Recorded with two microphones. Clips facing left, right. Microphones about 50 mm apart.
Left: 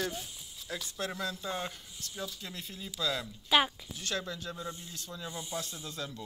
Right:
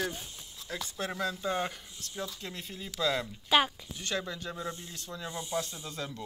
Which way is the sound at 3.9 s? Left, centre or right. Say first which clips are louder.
Right 2 dB; right.